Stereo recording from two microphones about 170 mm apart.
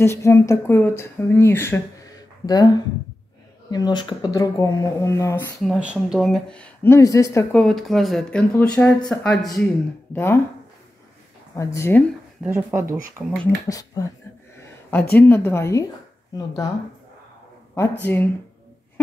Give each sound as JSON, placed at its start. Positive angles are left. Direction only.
{"t": 0.0, "sound": "speech", "side_deg": 15}
{"t": 5.6, "sound": "speech", "side_deg": -5}
{"t": 7.5, "sound": "speech", "side_deg": 0}
{"t": 10.1, "sound": "speech", "side_deg": 15}
{"t": 11.5, "sound": "speech", "side_deg": 20}
{"t": 12.4, "sound": "speech", "side_deg": -15}
{"t": 13.7, "sound": "speech", "side_deg": 20}
{"t": 14.6, "sound": "a sound", "side_deg": 10}
{"t": 15.1, "sound": "speech", "side_deg": 10}
{"t": 17.7, "sound": "speech", "side_deg": 10}